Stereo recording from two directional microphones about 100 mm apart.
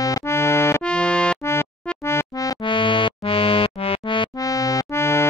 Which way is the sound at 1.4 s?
25° left (ahead or behind).